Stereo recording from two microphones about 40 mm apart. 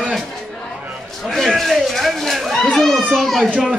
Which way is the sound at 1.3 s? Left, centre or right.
Centre.